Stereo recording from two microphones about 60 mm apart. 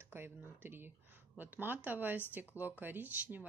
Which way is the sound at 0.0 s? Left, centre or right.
Right.